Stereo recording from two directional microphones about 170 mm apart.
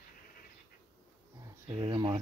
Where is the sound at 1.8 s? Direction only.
25° right (ahead or behind).